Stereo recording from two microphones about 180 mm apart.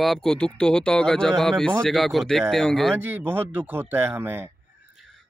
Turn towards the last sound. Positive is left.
turn(degrees=-10)  # may be behind; listen again after turning